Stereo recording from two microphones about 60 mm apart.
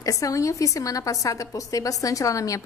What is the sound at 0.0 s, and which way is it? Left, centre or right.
A woman's voice, left.